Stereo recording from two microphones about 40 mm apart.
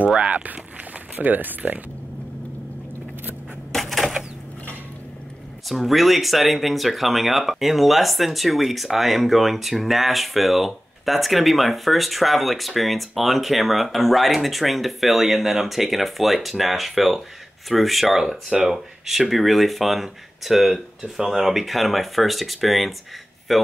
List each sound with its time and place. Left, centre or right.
0.2 s speech: right
3.7 s typewriter: centre
5.7 s speech: centre